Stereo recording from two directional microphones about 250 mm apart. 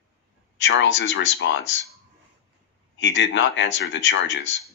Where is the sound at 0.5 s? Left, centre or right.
Left.